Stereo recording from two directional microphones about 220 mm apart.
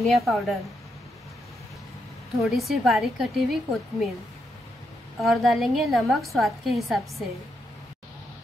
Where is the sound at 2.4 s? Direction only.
Centre (ahead or behind).